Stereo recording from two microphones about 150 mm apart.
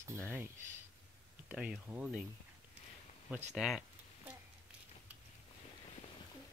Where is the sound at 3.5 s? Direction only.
5° right (ahead or behind).